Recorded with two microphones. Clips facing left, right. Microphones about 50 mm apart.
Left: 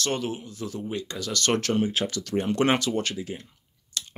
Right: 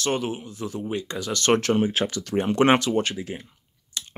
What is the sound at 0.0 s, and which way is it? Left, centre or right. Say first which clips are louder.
Speech: right 3 dB; right.